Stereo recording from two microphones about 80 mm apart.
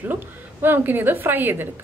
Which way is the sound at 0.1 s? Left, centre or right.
Right.